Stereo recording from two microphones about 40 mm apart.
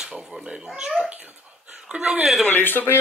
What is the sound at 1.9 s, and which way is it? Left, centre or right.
Speech, right.